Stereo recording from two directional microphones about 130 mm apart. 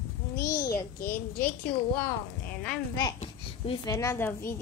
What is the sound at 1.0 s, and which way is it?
Speech, 90° left.